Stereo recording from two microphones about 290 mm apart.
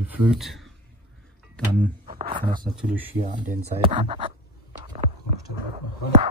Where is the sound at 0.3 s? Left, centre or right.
Centre.